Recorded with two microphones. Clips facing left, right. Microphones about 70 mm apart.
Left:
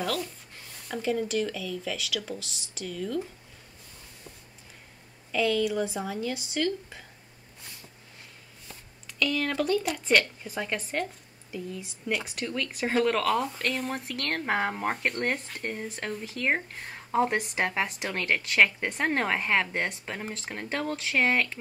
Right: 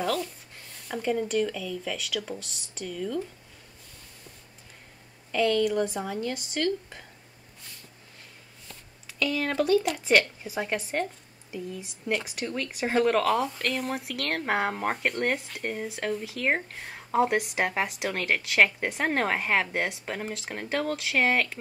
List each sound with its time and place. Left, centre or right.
0.8 s speech: centre
5.3 s speech: centre
9.2 s speech: centre